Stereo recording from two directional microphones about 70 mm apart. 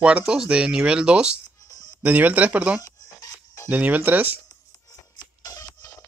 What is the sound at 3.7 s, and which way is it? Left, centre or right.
Speech, right.